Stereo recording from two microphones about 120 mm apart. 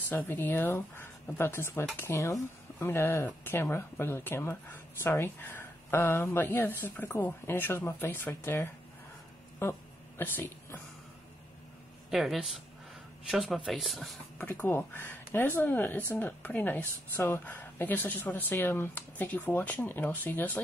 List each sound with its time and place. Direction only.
0.1 s speech: 15° left (ahead or behind)
9.6 s a sound: 20° left (ahead or behind)
12.1 s speech: 5° right (ahead or behind)
14.5 s speech: 15° left (ahead or behind)